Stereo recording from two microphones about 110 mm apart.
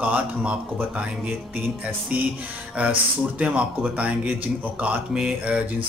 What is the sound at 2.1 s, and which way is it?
Speech, 15° right (ahead or behind).